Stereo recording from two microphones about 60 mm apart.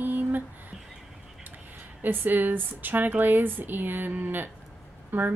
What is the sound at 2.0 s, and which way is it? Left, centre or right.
Speech, right.